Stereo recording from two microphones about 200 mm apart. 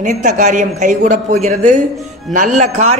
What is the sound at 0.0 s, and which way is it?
A man's voice, 35° right (ahead or behind).